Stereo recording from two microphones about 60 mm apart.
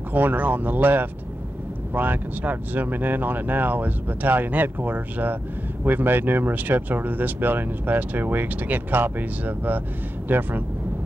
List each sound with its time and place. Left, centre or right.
0.1 s speech: right